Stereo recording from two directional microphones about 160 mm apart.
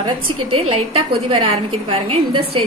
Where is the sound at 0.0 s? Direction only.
35° right (ahead or behind).